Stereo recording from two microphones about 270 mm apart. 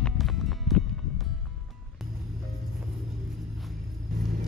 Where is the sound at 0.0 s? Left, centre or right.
Centre.